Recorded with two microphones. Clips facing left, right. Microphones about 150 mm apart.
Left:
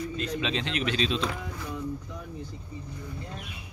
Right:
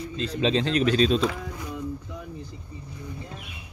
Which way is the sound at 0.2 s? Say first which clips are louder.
Right 9 dB; 35° right (ahead or behind).